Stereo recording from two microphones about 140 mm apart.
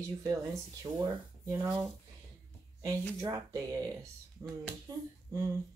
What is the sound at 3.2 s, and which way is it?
Speech, 25° right (ahead or behind).